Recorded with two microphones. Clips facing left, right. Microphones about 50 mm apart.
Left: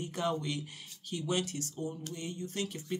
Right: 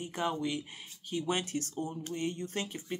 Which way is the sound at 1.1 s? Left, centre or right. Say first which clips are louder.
Right 1 dB; right.